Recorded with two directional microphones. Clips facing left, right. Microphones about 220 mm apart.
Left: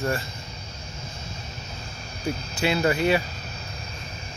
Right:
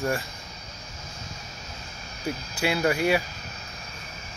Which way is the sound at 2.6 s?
10° right (ahead or behind).